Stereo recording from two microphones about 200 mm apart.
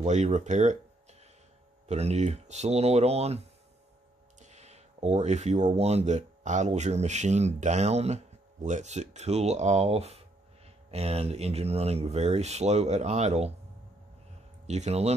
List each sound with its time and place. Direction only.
0.0 s speech: 35° right (ahead or behind)
1.9 s speech: 35° right (ahead or behind)
4.4 s speech: 35° right (ahead or behind)
14.7 s speech: 35° right (ahead or behind)